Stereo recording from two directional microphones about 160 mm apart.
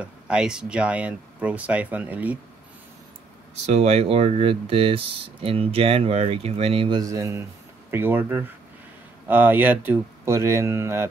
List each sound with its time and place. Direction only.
0.0 s speech: 5° right (ahead or behind)
3.6 s speech: 40° right (ahead or behind)
7.0 s speech: 20° right (ahead or behind)